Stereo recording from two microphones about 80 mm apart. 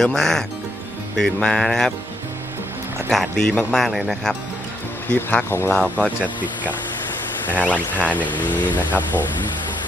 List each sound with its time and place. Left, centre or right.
0.0 s music: centre
3.1 s music: centre
5.1 s speech: left
5.9 s speech: centre
7.9 s speech: centre
8.2 s speech: left